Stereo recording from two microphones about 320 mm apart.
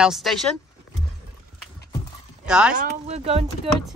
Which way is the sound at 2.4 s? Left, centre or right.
Centre.